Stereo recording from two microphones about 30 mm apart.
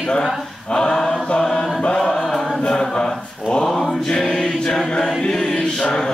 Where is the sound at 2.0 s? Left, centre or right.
Centre.